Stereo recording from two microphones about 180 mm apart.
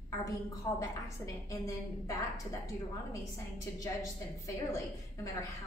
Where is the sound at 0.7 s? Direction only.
15° left (ahead or behind).